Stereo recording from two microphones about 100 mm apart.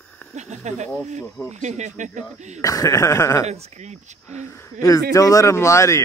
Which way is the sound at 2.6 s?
35° left (ahead or behind).